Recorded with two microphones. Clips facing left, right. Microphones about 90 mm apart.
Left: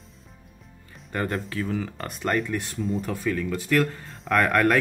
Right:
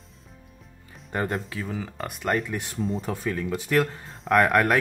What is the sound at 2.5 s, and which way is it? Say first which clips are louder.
Speech: left 1 dB; 15° right (ahead or behind).